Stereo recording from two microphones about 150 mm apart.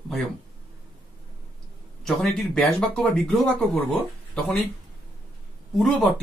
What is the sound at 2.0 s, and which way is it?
Speech, 5° left (ahead or behind).